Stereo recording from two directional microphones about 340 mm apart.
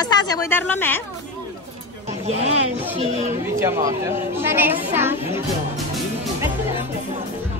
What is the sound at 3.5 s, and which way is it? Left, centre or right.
Speech, centre.